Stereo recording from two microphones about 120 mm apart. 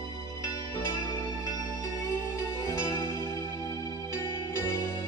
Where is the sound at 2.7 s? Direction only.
25° left (ahead or behind).